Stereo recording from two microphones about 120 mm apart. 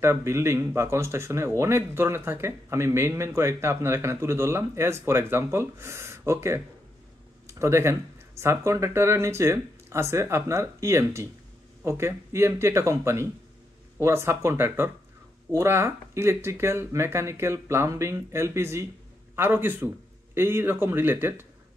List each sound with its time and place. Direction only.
0.0 s speech: 20° right (ahead or behind)